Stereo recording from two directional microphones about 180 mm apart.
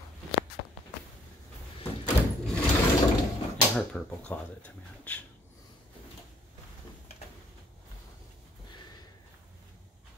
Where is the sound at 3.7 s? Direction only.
5° left (ahead or behind).